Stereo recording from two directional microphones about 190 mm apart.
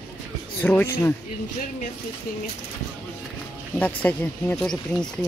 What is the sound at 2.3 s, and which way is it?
Speech, 50° left (ahead or behind).